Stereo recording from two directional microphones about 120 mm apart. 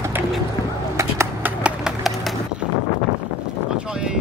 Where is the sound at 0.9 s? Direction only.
20° right (ahead or behind).